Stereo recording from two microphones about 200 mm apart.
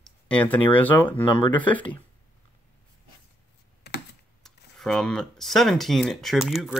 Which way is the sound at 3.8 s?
55° left (ahead or behind).